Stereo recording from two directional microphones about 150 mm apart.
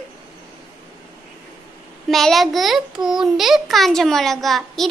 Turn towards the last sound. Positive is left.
turn(degrees=0)  # may be behind; listen again after turning